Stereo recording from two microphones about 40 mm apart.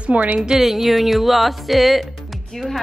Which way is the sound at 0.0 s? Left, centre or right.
Right.